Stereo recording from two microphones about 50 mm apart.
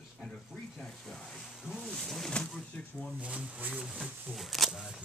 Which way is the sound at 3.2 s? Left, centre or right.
Right.